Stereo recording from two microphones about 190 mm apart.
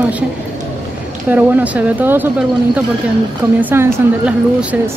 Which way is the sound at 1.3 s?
10° right (ahead or behind).